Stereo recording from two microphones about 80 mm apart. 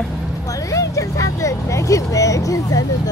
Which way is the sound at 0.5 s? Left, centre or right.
Left.